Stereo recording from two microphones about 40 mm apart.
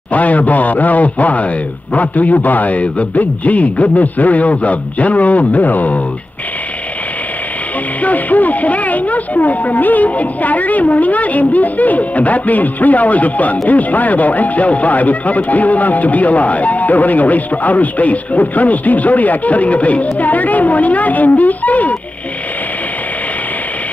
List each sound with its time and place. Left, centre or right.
0.1 s a man's voice: left
8.0 s speech: left